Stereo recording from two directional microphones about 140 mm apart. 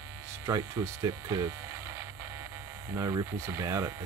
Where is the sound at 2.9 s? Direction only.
25° right (ahead or behind).